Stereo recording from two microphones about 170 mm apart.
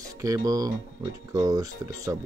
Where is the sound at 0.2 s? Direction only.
20° right (ahead or behind).